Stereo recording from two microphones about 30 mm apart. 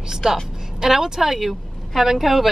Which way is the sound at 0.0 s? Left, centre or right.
Centre.